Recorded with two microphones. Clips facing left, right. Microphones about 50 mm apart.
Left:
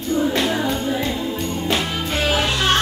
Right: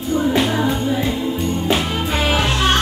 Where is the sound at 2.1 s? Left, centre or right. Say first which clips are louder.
Right 1 dB; right.